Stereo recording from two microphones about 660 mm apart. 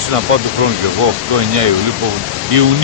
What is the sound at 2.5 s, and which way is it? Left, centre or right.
Speech, right.